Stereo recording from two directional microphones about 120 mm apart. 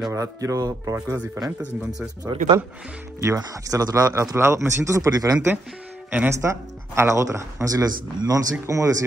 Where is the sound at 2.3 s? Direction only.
50° right (ahead or behind).